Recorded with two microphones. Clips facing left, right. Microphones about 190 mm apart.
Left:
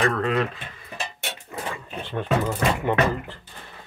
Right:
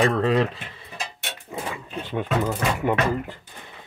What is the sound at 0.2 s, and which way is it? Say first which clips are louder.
Speech: right 3 dB; 30° right (ahead or behind).